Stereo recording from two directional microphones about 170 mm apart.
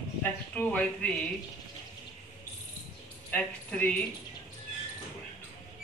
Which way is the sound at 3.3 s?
10° left (ahead or behind).